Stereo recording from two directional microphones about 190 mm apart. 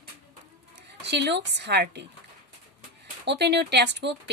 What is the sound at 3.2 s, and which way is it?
Speech, 60° right (ahead or behind).